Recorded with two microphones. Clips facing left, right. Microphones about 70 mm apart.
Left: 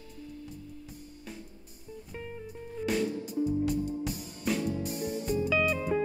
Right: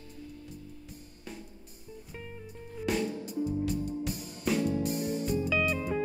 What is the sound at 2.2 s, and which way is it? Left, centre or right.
Music, centre.